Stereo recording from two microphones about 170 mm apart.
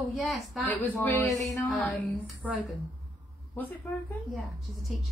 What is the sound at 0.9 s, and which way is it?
Speech, 15° left (ahead or behind).